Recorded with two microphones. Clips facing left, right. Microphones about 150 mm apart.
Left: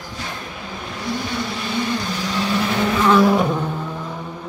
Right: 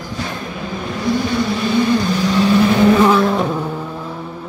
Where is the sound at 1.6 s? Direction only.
75° right (ahead or behind); by 2.7 s 60° right (ahead or behind).